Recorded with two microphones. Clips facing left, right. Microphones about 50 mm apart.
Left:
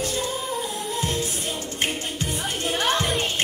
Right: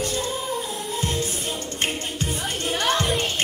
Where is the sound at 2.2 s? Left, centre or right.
Centre.